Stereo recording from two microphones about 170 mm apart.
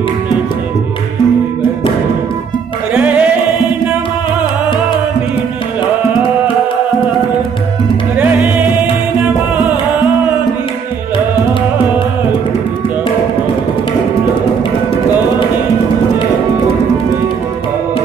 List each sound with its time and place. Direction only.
2.9 s music: 10° right (ahead or behind)
8.2 s music: 10° right (ahead or behind)